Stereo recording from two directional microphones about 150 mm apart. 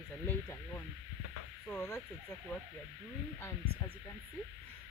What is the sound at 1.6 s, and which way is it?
Speech, 15° left (ahead or behind).